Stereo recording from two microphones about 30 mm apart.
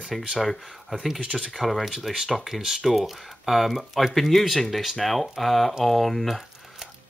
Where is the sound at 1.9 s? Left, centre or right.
Centre.